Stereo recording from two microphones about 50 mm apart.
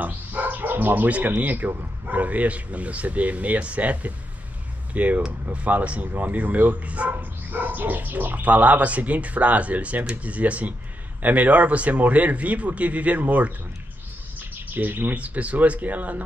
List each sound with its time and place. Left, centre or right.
0.0 s bow-wow: right
1.4 s speech: right
8.4 s speech: right
14.7 s speech: right
15.1 s speech: right